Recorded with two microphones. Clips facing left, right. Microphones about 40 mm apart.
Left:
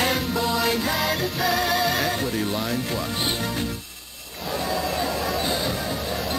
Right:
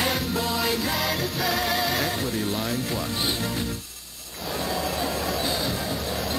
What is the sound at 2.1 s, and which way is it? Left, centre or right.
Speech, centre.